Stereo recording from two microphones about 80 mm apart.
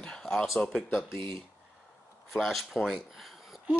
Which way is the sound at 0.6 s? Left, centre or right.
Centre.